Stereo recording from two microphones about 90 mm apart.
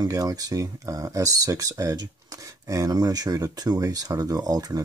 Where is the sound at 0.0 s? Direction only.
45° right (ahead or behind).